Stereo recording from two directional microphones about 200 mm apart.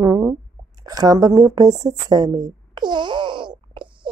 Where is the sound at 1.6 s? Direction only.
20° right (ahead or behind).